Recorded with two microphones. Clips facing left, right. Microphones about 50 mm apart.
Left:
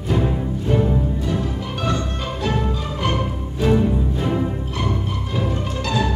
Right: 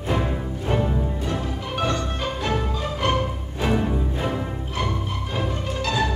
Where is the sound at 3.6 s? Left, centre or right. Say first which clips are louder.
Left 5 dB; centre.